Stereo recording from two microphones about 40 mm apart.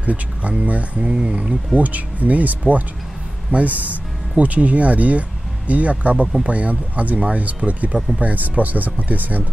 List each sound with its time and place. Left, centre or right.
0.0 s speech: right
1.0 s speech: right
1.8 s speech: right